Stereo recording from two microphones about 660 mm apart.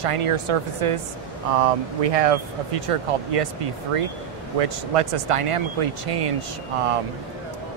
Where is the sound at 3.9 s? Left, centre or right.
Right.